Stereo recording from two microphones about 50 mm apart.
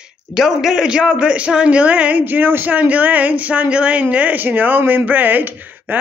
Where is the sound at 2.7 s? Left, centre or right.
Right.